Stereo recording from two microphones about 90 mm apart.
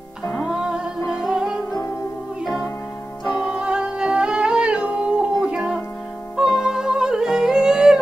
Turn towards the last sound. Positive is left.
turn(degrees=-5)  # may be behind; listen again after turning